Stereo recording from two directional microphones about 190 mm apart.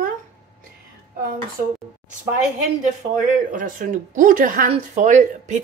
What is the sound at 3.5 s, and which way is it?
A woman's voice, 45° right (ahead or behind).